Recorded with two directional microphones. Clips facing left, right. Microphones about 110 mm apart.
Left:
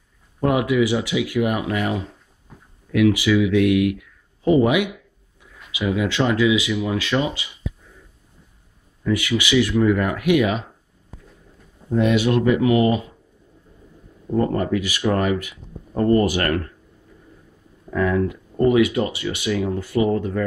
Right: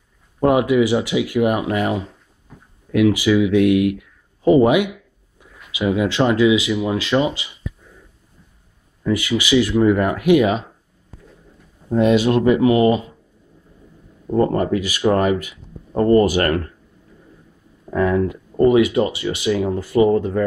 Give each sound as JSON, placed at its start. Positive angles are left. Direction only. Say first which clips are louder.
{"t": 0.4, "sound": "speech", "louder": "right 4 dB", "side_deg": -30}
{"t": 9.0, "sound": "speech", "louder": "right 2 dB", "side_deg": -25}
{"t": 11.9, "sound": "speech", "louder": "right 3 dB", "side_deg": -30}
{"t": 14.3, "sound": "speech", "louder": "right 3 dB", "side_deg": -35}
{"t": 17.9, "sound": "speech", "louder": "right 2 dB", "side_deg": -30}